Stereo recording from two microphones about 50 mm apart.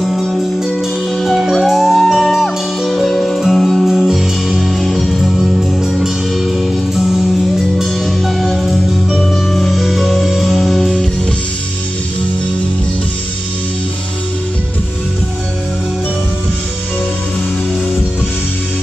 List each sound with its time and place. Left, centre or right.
0.0 s music: centre